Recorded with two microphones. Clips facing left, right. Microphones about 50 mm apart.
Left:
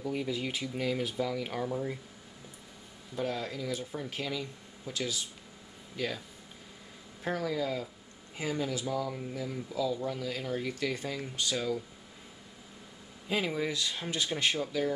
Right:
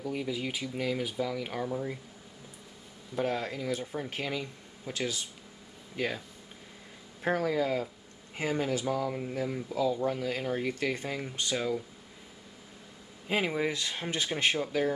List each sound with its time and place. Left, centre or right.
0.0 s speech: centre
3.2 s speech: right
7.2 s speech: right
13.3 s speech: right